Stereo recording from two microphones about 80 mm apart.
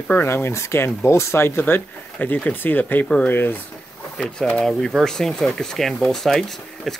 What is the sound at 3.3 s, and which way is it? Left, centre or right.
Speech, left.